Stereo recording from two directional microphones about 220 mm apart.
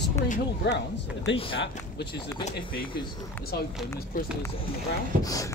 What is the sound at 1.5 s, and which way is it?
Speech, 50° left (ahead or behind).